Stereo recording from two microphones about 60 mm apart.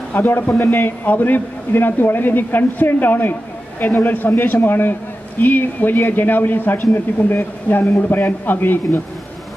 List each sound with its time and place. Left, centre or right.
0.1 s a man's voice: left